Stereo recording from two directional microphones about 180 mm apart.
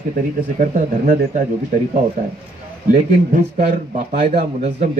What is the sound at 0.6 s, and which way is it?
Speech, 45° right (ahead or behind).